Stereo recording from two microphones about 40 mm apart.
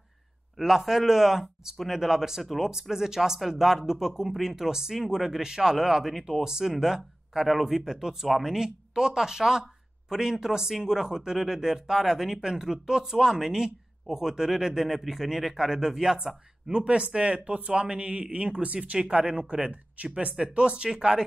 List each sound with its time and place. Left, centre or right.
0.6 s speech: centre; by 20.3 s right
20.3 s speech: right